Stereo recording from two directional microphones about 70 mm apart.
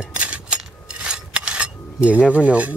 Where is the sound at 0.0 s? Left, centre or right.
Centre.